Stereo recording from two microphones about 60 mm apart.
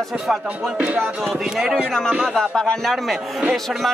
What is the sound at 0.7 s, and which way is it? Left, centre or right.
Speech, centre.